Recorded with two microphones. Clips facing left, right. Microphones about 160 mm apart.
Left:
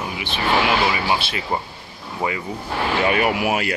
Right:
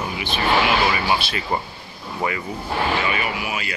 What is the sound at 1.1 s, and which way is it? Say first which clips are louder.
Speech: even; 20° left (ahead or behind).